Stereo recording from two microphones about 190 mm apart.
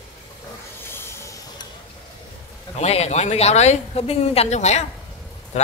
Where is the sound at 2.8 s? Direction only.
35° left (ahead or behind).